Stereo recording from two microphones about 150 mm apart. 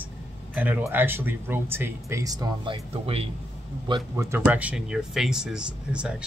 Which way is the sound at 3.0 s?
40° right (ahead or behind).